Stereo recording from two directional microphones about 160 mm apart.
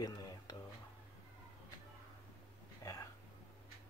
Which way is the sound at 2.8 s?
20° left (ahead or behind).